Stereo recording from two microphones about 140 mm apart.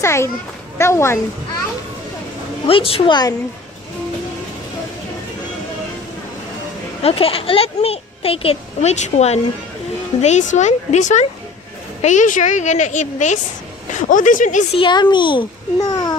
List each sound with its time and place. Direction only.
0.0 s speech: 20° left (ahead or behind)
2.6 s a child's voice: 40° left (ahead or behind)
7.0 s a child's voice: 40° left (ahead or behind); by 13.4 s 60° left (ahead or behind)
14.0 s speech: 70° left (ahead or behind)
14.8 s a child's voice: 35° left (ahead or behind)